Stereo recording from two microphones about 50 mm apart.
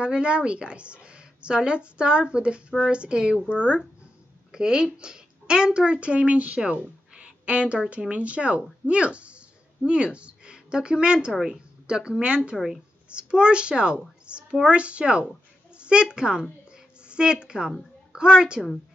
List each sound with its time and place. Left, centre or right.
0.0 s a woman's voice: right
4.5 s a woman's voice: centre
7.2 s a sound: right
8.1 s a woman's voice: right
12.5 s speech: centre
13.1 s a woman's voice: centre
16.7 s a sound: centre
18.1 s a woman's voice: centre